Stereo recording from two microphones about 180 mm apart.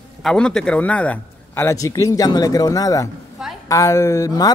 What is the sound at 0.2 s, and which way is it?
Speech, 5° left (ahead or behind).